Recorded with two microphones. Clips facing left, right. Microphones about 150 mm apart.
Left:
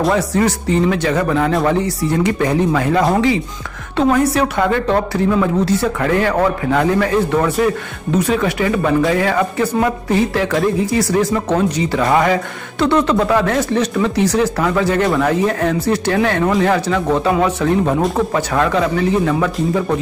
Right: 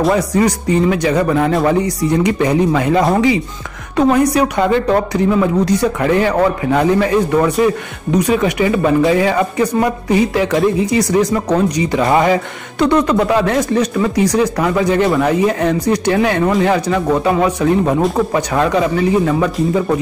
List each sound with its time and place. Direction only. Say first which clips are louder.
0.1 s a man's voice: right 2 dB; 15° right (ahead or behind)
15.0 s speech: right 2 dB; centre (ahead or behind)
15.2 s a man's voice: right 2 dB; 15° right (ahead or behind)